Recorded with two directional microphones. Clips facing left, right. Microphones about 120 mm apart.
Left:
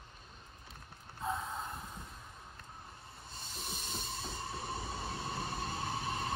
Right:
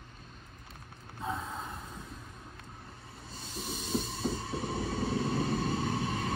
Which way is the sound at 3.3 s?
Centre (ahead or behind).